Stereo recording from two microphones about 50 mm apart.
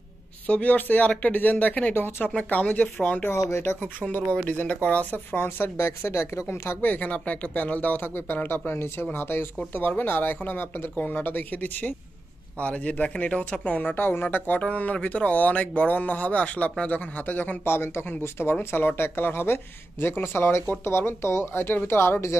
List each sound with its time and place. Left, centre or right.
0.5 s speech: left
0.7 s speech: left
2.3 s speech: left
3.4 s speech: left
3.8 s speech: left
5.3 s a man's voice: left
6.8 s a man's voice: left
13.9 s a man's voice: left
21.2 s speech: left